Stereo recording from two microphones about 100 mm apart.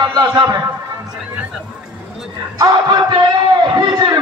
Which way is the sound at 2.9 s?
50° right (ahead or behind).